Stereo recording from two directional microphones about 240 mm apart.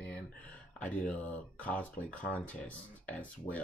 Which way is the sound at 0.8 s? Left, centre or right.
Centre.